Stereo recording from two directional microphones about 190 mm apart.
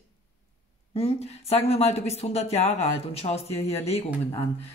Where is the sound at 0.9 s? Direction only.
35° left (ahead or behind).